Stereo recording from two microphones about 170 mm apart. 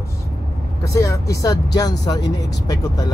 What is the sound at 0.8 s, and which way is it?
Speech, 20° left (ahead or behind).